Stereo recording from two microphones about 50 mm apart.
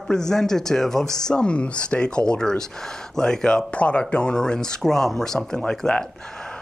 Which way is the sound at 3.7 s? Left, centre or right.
Left.